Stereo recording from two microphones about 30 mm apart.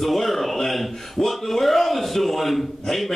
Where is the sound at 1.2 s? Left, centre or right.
Left.